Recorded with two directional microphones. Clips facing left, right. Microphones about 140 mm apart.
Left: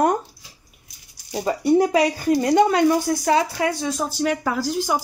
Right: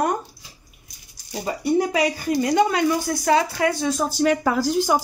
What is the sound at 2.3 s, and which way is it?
Speech, 45° left (ahead or behind).